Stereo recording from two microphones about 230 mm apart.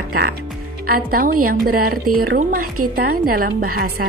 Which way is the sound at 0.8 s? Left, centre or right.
Right.